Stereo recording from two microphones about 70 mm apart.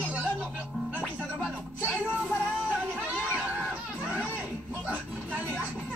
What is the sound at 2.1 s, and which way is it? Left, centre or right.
Child singing, centre.